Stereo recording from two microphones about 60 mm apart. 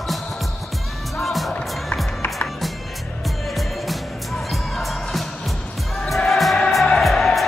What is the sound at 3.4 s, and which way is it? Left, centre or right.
Music, centre.